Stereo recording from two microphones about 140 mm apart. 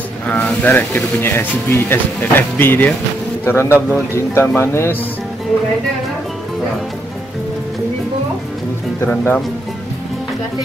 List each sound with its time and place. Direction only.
0.3 s speech: 10° left (ahead or behind)
9.1 s speech: 15° left (ahead or behind)